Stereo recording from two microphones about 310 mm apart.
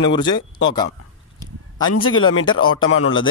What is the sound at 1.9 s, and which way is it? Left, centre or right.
Speech, left.